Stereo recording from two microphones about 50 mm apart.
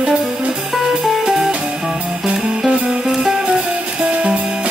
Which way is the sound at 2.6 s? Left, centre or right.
Centre.